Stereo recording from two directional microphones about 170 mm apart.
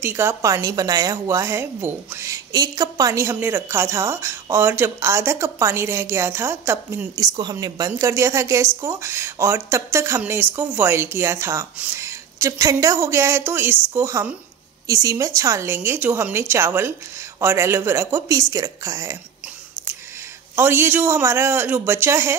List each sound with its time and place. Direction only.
0.0 s a woman's voice: 15° right (ahead or behind)
20.5 s a woman's voice: 15° right (ahead or behind)